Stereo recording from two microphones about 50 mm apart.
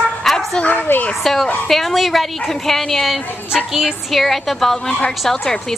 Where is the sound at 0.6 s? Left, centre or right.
Left.